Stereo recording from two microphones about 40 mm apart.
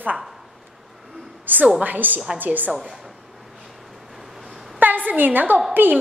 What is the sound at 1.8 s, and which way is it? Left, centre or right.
Speech, right.